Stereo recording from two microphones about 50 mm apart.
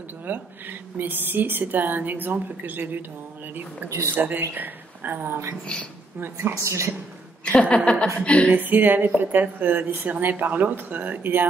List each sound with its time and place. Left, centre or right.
0.2 s speech: right
4.1 s speech: right
6.5 s a woman's voice: right
7.7 s a woman's voice: left
8.5 s speech: right